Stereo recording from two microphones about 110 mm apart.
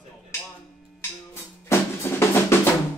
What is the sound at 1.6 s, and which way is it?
Drum, 20° left (ahead or behind).